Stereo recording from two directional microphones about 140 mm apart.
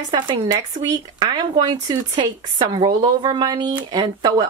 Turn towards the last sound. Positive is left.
turn(degrees=-30)  # may be behind; listen again after turning